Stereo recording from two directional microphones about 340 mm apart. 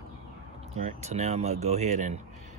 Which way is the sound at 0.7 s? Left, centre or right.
Centre.